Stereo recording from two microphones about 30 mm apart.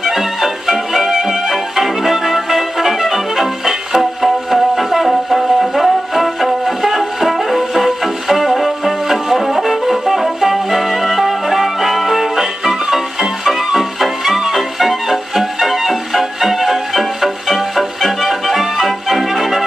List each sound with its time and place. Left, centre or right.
0.0 s music: centre